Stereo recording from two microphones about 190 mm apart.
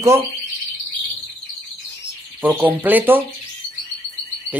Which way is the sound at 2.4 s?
10° right (ahead or behind).